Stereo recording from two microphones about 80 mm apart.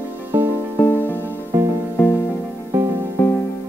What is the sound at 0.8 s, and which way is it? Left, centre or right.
Music, left.